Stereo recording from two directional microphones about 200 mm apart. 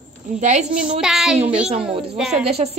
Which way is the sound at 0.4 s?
35° right (ahead or behind).